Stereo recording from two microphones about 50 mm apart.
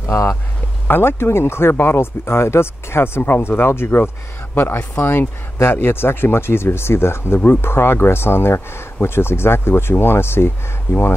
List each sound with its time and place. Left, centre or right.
0.0 s speech: left
0.8 s speech: left
3.2 s speech: left